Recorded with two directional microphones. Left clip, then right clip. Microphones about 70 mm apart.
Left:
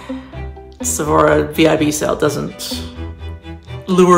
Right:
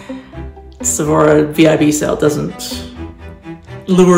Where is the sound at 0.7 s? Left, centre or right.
Left.